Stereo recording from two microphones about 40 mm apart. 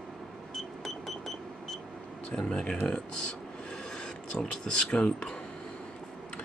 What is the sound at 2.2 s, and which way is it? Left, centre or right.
Speech, left.